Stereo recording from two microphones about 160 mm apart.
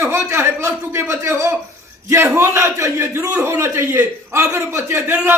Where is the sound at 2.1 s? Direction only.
15° right (ahead or behind).